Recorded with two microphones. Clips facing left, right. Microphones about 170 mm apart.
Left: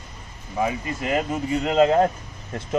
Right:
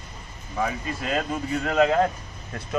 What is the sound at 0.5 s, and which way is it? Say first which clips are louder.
Speech: left 3 dB; 20° left (ahead or behind).